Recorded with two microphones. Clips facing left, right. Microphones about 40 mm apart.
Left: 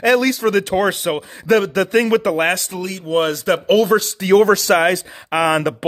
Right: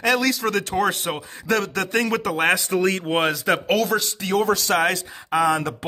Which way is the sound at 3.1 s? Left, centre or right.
Centre.